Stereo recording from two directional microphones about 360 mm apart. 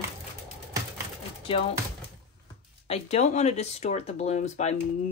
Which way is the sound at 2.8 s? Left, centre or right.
Centre.